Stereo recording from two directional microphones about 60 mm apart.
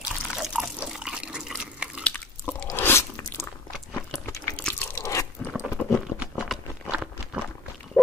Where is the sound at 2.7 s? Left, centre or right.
Left.